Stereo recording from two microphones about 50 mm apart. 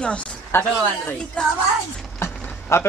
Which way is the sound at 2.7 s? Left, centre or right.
Left.